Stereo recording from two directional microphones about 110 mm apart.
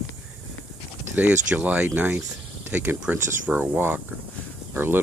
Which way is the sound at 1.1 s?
15° right (ahead or behind).